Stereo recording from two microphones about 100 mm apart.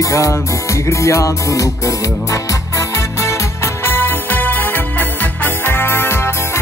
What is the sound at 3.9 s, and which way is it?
Music, 20° left (ahead or behind).